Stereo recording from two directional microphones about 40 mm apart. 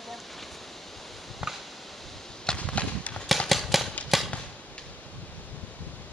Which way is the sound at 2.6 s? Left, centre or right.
Left.